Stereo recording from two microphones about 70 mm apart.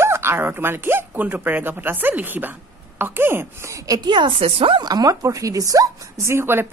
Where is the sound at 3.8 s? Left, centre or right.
Right.